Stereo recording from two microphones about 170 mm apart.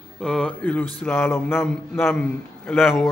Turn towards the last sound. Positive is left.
turn(degrees=0)  # may be behind; listen again after turning